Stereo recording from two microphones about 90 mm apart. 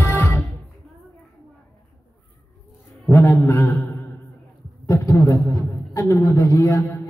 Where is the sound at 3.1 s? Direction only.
35° left (ahead or behind).